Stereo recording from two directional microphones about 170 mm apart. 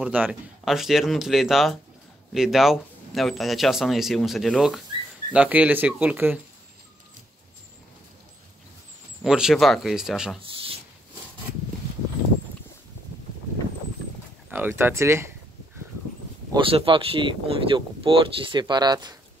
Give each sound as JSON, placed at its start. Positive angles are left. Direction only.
{"t": 0.0, "sound": "speech", "side_deg": -10}
{"t": 9.2, "sound": "speech", "side_deg": 0}
{"t": 14.5, "sound": "speech", "side_deg": -15}
{"t": 16.5, "sound": "speech", "side_deg": -30}